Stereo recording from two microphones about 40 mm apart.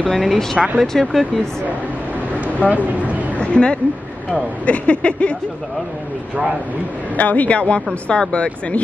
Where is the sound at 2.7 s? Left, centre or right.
Right.